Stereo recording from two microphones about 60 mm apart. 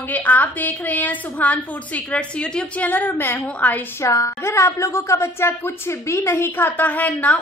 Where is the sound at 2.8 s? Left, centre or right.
Left.